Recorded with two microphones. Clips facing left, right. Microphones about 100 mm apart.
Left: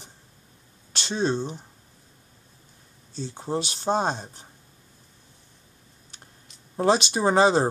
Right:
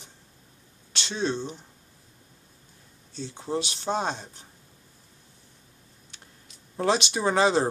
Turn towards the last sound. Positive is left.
turn(degrees=35)  # may be behind; listen again after turning